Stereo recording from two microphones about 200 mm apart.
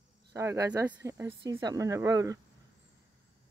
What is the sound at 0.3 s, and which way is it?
Speech, 15° right (ahead or behind).